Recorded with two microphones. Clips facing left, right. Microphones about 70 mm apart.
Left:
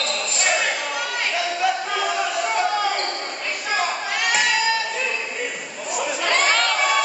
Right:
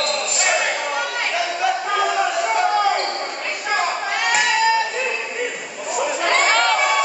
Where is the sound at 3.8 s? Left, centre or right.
Centre.